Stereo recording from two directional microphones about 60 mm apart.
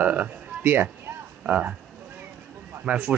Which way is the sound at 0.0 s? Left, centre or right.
Right.